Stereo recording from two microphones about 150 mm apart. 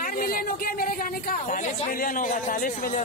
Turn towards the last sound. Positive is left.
turn(degrees=65)  # may be behind; listen again after turning